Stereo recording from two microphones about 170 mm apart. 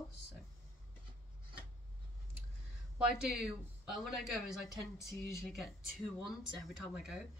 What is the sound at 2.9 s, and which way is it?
Speech, 5° right (ahead or behind).